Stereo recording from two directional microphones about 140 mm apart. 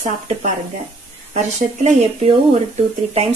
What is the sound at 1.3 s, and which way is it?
Speech, 50° right (ahead or behind).